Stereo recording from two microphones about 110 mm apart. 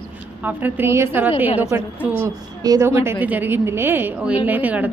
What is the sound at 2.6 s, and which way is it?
Speech, 25° right (ahead or behind).